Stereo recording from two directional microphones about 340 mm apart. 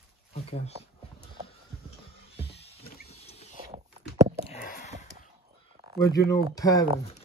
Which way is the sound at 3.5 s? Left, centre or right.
Centre.